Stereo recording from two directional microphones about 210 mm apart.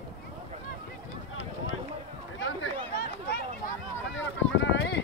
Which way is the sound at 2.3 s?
65° left (ahead or behind).